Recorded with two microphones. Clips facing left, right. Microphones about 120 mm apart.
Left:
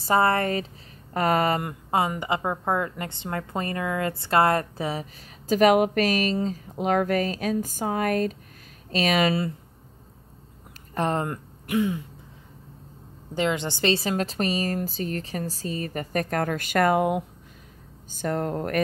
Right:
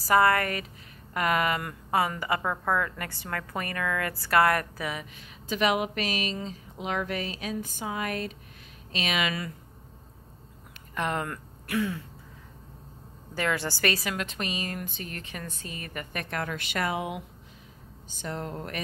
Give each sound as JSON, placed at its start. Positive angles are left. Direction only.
{"t": 0.0, "sound": "a woman's voice", "side_deg": 25}
{"t": 1.6, "sound": "a woman's voice", "side_deg": 25}
{"t": 5.5, "sound": "a woman's voice", "side_deg": 45}
{"t": 11.0, "sound": "speech", "side_deg": 30}
{"t": 13.3, "sound": "a woman's voice", "side_deg": 20}